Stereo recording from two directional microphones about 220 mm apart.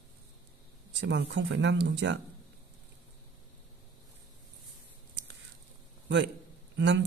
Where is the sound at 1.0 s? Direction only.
55° right (ahead or behind).